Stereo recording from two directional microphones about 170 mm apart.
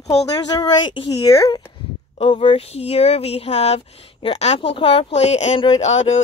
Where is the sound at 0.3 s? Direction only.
25° left (ahead or behind).